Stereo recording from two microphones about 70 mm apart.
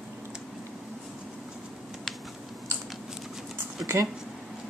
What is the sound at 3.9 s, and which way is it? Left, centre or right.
Speech, right.